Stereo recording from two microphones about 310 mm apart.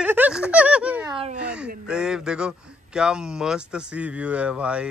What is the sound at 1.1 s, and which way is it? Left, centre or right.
Speech, centre.